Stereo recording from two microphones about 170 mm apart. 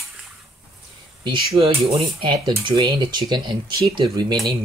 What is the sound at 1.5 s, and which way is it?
Speech, 30° right (ahead or behind).